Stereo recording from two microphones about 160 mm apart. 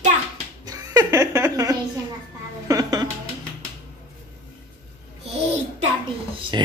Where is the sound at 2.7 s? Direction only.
25° right (ahead or behind).